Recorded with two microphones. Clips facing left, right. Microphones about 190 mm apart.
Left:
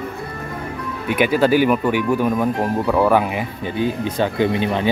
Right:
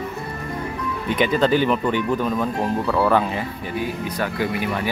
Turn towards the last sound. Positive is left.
turn(degrees=25)  # may be behind; listen again after turning